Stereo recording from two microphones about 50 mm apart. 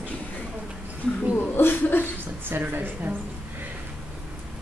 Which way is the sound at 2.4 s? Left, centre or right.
Right.